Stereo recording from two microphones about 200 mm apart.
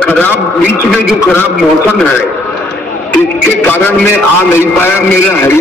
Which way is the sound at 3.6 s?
10° left (ahead or behind).